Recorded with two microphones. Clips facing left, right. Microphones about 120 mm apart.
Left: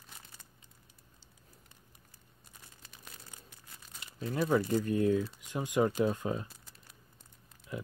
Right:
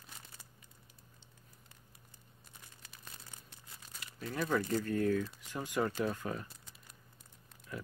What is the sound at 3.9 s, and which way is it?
Crumpling, 25° left (ahead or behind).